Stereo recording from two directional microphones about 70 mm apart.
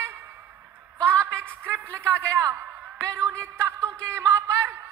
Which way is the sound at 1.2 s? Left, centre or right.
Right.